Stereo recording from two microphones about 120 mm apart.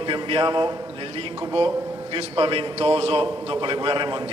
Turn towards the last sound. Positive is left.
turn(degrees=-40)  # may be behind; listen again after turning